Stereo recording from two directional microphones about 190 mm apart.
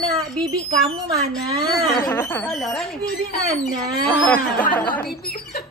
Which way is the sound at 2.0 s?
10° left (ahead or behind).